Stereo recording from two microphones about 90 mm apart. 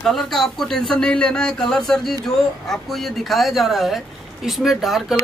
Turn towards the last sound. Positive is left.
turn(degrees=-5)  # may be behind; listen again after turning